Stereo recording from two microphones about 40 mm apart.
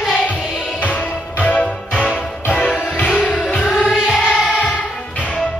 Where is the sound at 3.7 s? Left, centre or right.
Centre.